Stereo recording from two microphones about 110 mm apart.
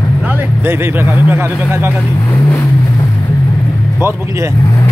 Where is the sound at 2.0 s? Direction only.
30° left (ahead or behind).